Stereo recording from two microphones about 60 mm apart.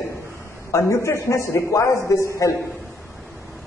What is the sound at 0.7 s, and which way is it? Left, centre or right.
A man's voice, left.